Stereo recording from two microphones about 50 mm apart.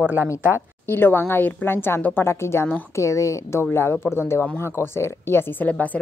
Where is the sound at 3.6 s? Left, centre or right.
Left.